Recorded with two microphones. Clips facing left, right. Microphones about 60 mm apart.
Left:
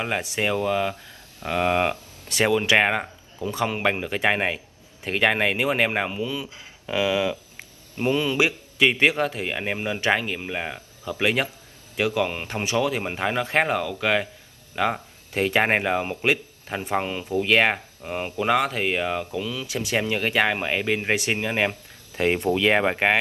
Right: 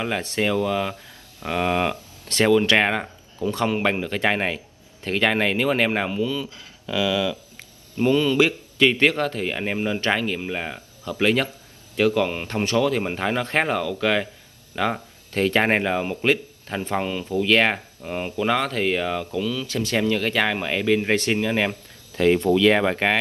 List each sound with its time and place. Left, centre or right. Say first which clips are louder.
0.0 s speech: right 1 dB; centre
1.5 s speech: even; left
2.2 s speech: right 3 dB; centre